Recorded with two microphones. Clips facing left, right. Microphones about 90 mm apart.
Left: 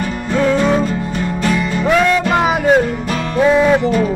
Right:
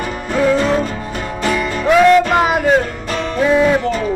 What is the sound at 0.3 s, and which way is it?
Music, 5° right (ahead or behind).